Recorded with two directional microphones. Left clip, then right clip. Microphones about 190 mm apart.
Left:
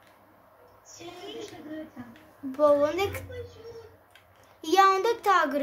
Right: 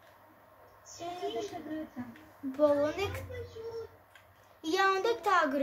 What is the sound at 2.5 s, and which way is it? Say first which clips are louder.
Child singing: left 5 dB; 20° left (ahead or behind).